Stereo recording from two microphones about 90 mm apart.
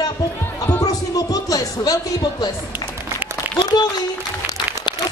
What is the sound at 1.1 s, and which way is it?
Speech, 45° left (ahead or behind).